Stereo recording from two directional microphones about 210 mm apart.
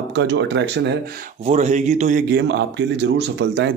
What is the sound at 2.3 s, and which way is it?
A man's voice, 55° right (ahead or behind).